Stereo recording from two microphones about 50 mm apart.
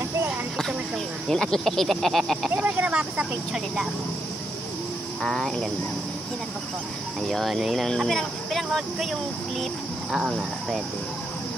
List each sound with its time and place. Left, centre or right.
1.3 s speech: centre
2.5 s speech: right
2.9 s speech: right
5.2 s cricket: centre
7.2 s speech: centre
10.1 s speech: centre